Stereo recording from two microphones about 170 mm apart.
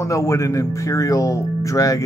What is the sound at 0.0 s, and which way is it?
Speech, 15° left (ahead or behind).